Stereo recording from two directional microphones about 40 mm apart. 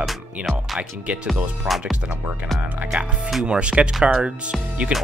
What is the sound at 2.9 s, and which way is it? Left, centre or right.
Speech, right.